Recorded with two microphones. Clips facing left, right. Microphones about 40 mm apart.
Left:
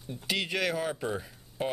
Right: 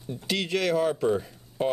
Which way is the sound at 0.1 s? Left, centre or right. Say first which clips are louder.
Right 4 dB; centre.